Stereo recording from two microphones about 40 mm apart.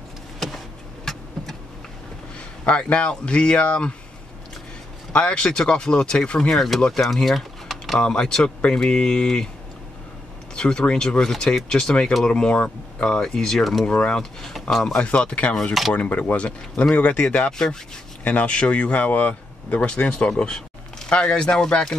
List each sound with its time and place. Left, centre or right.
1.0 s vehicle: centre
2.6 s speech: left
5.1 s speech: left
6.5 s speech: centre
7.2 s typing: centre
8.0 s speech: centre
10.5 s speech: left
14.5 s speech: centre
15.0 s speech: left
17.5 s speech: centre
18.2 s speech: left
19.9 s speech: left